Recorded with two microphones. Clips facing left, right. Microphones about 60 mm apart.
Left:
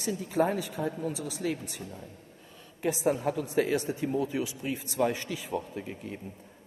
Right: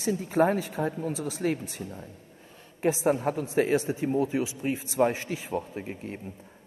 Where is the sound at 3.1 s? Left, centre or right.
Right.